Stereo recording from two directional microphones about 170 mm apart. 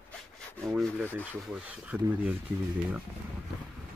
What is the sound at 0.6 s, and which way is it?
Rub, centre (ahead or behind).